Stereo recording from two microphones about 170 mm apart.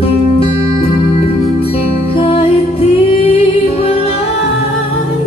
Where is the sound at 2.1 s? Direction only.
35° left (ahead or behind).